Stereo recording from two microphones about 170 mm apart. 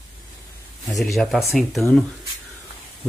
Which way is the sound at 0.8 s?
Centre (ahead or behind).